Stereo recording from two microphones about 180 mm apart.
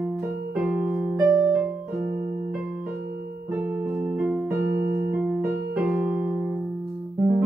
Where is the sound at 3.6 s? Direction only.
10° right (ahead or behind).